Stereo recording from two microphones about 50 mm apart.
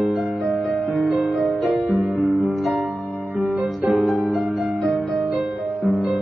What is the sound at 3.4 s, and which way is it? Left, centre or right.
Music, right.